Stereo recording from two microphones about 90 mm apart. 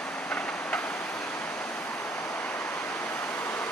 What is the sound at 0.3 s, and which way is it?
Train, 15° left (ahead or behind).